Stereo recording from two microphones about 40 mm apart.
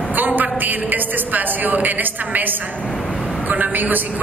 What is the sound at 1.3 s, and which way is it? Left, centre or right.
A man's voice, right.